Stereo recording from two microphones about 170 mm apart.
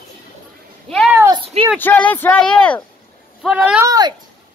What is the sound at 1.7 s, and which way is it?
Speech, 10° left (ahead or behind).